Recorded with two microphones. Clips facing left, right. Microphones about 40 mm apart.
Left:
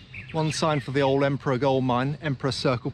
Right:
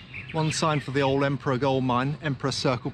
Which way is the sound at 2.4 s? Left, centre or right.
Centre.